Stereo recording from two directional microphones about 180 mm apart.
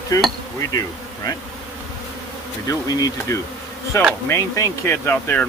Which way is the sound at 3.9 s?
15° left (ahead or behind).